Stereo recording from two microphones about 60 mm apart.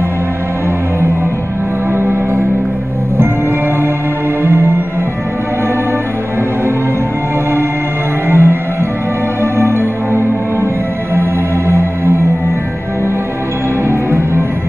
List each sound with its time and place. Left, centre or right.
4.5 s music: right
8.3 s music: right
13.8 s music: right